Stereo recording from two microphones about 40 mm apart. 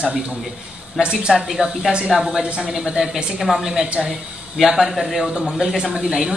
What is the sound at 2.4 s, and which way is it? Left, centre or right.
Speech, right.